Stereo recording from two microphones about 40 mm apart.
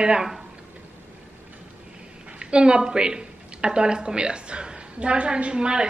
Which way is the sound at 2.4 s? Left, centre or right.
Right.